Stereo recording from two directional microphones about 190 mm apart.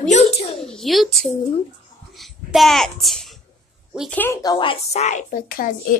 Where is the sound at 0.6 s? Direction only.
Centre (ahead or behind).